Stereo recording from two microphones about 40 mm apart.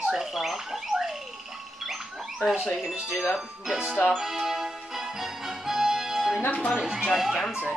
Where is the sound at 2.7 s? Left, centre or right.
Right.